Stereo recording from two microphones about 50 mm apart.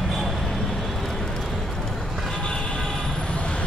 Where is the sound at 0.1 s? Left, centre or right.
Centre.